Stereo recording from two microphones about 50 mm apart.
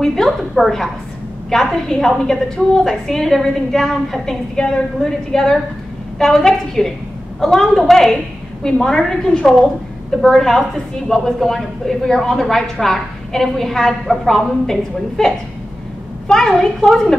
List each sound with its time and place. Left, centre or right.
0.0 s a woman's voice: centre